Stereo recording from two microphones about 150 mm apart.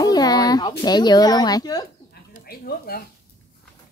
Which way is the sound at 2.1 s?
85° left.